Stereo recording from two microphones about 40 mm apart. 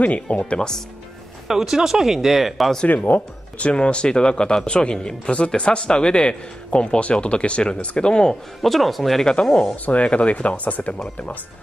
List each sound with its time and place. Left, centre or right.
0.0 s speech: left
0.6 s speech: centre
1.5 s speech: centre
2.9 s speech: left
3.6 s speech: left
8.6 s speech: centre
9.2 s speech: left
9.8 s speech: left